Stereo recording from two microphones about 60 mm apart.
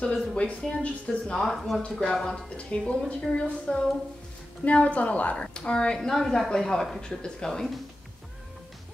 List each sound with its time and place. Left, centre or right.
0.0 s speech: centre
1.4 s speech: centre
1.8 s speech: centre
2.7 s a woman's voice: centre
5.9 s speech: centre